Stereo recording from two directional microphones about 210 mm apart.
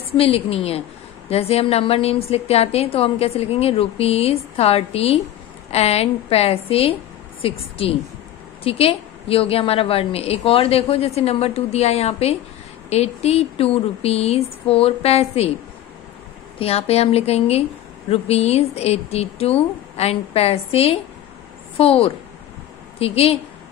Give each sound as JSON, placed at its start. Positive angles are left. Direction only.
{"t": 0.2, "sound": "a woman's voice", "side_deg": 30}
{"t": 16.5, "sound": "a woman's voice", "side_deg": 30}